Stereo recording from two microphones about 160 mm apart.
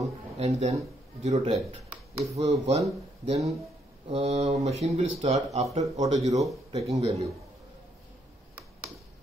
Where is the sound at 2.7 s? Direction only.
45° right (ahead or behind).